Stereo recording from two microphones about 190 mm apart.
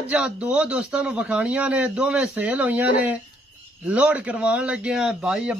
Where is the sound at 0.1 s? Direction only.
5° right (ahead or behind).